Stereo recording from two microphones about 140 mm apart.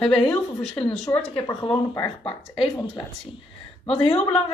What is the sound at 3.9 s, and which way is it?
Speech, 45° left (ahead or behind).